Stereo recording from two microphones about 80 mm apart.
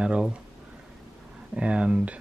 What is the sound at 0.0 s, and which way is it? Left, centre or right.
Speech, centre.